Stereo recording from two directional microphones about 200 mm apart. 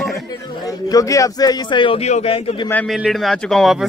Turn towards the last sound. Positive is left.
turn(degrees=0)  # may be behind; listen again after turning